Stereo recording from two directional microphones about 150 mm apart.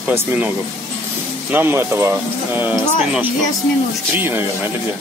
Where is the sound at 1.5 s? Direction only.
15° right (ahead or behind).